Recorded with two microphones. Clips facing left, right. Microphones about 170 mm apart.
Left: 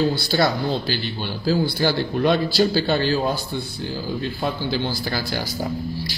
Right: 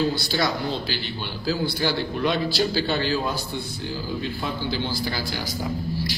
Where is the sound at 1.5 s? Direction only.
35° left (ahead or behind).